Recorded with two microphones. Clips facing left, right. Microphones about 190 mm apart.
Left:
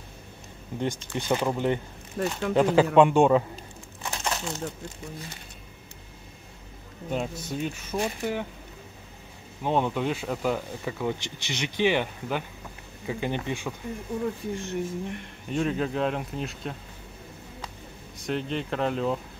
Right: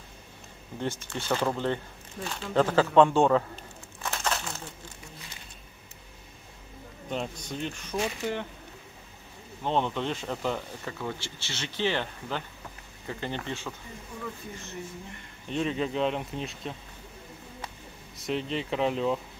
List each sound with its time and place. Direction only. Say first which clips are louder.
0.7 s speech: left 3 dB; 15° left (ahead or behind)
2.2 s speech: left 9 dB; 60° left (ahead or behind)
2.5 s speech: left 2 dB; 15° left (ahead or behind)
4.0 s crumpling: even; 15° left (ahead or behind)
7.1 s speech: left 3 dB; 5° left (ahead or behind)
9.6 s speech: left 3 dB; 10° left (ahead or behind)
14.6 s speech: left 9 dB; 70° left (ahead or behind)
15.4 s speech: left 2 dB; 5° left (ahead or behind)
18.1 s speech: left 1 dB; centre (ahead or behind)